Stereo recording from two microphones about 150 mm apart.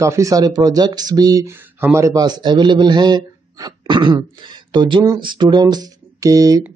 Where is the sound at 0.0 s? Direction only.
20° right (ahead or behind).